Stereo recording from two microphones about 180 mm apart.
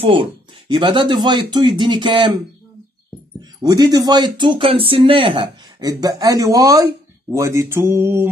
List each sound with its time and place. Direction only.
0.0 s speech: 30° right (ahead or behind); by 8.3 s 15° right (ahead or behind)